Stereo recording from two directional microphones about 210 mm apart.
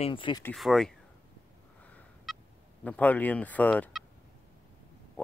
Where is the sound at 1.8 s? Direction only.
5° left (ahead or behind).